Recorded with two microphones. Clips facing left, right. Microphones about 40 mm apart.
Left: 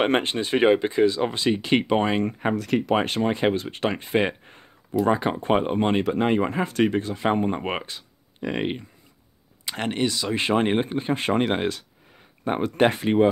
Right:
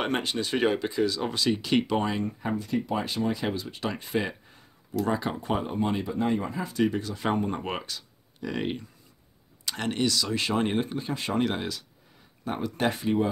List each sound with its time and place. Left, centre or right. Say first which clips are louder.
0.0 s speech: left 6 dB; left
2.0 s speech: left 5 dB; left
2.2 s speech: left 6 dB; left
3.2 s speech: left 6 dB; left
3.9 s speech: left 6 dB; left
6.0 s speech: left 6 dB; left
6.6 s speech: left 5 dB; left
7.3 s speech: left 4 dB; left